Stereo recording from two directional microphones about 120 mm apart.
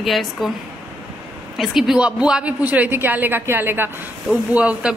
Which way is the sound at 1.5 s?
Centre (ahead or behind).